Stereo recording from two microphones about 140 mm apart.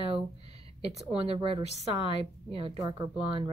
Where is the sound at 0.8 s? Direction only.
50° right (ahead or behind).